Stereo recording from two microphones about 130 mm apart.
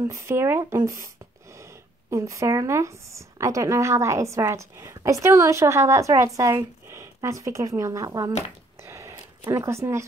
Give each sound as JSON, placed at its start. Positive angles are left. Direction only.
{"t": 0.0, "sound": "speech", "side_deg": -20}
{"t": 8.8, "sound": "a sound", "side_deg": -20}
{"t": 9.1, "sound": "speech", "side_deg": -25}